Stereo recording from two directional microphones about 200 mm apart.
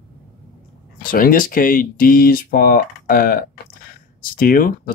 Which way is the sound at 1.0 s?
45° left (ahead or behind).